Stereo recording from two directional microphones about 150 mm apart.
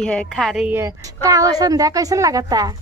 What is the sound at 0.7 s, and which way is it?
Speech, 15° right (ahead or behind).